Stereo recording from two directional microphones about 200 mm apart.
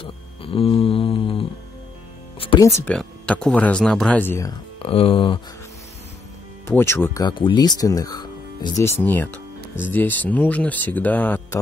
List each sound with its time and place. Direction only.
0.0 s a sound: 25° left (ahead or behind)
2.3 s music: 25° left (ahead or behind)
2.8 s speech: 5° left (ahead or behind)
4.7 s speech: 25° left (ahead or behind)
6.7 s speech: 10° left (ahead or behind)